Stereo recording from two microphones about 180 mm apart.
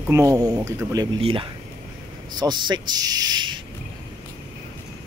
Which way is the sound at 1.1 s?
30° right (ahead or behind).